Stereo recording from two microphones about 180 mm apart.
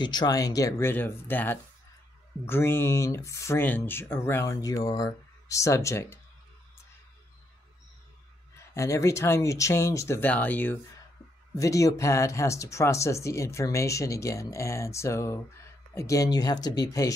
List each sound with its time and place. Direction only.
0.0 s speech: 25° left (ahead or behind)
8.7 s speech: 15° left (ahead or behind)